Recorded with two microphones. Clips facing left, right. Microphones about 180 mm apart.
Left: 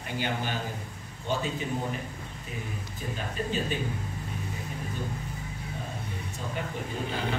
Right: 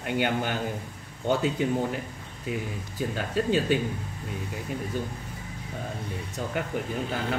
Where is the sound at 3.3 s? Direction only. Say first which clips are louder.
Right 7 dB; 75° right (ahead or behind).